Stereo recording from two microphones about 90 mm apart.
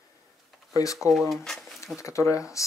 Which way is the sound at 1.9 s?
35° left (ahead or behind).